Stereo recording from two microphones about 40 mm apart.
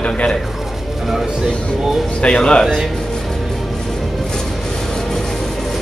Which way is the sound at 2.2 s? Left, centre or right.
Left.